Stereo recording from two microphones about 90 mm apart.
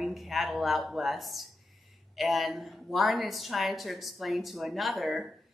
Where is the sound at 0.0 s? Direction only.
Centre (ahead or behind).